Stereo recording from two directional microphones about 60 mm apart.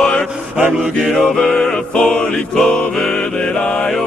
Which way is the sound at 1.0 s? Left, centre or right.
Centre.